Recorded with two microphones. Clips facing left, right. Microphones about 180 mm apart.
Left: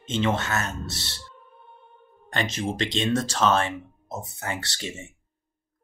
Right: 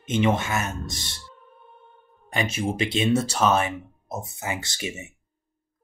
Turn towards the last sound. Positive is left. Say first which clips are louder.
# right 2 dB
turn(degrees=-10)  # may be behind; listen again after turning